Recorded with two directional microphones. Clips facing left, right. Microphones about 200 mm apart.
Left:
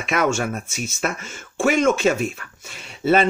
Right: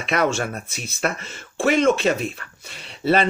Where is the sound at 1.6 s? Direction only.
30° right (ahead or behind).